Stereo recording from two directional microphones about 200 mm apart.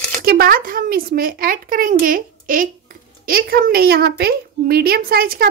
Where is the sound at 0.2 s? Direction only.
50° right (ahead or behind).